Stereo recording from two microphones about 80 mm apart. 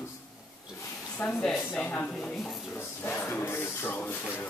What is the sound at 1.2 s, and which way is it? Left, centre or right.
Speech, centre.